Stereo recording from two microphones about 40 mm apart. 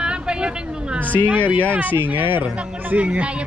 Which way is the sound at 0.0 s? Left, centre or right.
Right.